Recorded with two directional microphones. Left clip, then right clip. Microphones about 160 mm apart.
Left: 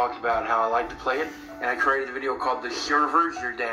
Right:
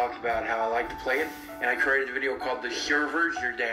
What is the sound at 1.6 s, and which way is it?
A man's voice, 15° left (ahead or behind).